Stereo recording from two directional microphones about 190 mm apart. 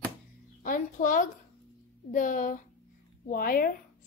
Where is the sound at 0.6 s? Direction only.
45° left (ahead or behind).